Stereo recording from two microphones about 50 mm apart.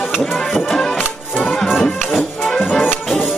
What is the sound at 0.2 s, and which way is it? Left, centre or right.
Music, centre.